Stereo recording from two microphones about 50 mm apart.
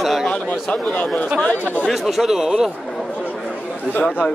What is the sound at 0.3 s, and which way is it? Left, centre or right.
Speech, left.